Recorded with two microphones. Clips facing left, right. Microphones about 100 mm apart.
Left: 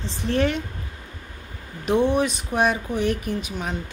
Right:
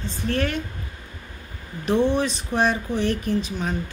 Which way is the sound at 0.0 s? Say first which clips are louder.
Left 2 dB; 20° left (ahead or behind).